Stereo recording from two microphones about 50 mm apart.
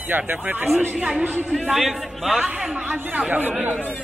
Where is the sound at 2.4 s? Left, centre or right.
Right.